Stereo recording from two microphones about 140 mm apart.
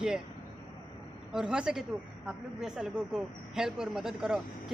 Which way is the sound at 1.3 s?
5° right (ahead or behind).